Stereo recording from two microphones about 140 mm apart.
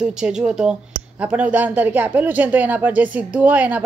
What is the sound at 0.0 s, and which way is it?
Speech, 5° right (ahead or behind).